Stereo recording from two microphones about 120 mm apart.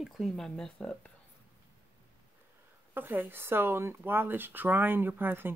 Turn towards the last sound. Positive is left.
turn(degrees=-15)  # may be behind; listen again after turning